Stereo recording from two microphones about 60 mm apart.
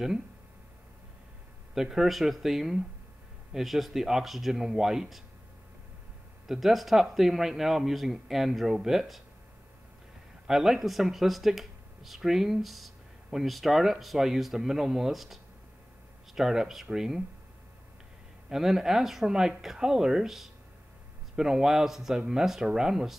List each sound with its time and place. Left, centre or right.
1.8 s speech: centre
6.4 s speech: centre
10.4 s speech: centre
18.5 s speech: centre